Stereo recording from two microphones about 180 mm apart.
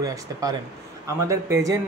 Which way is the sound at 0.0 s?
20° right (ahead or behind).